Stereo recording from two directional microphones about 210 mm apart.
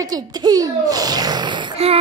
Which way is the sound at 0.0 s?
20° right (ahead or behind).